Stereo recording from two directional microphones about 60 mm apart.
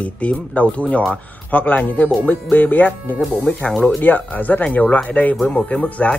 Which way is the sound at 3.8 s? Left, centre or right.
Left.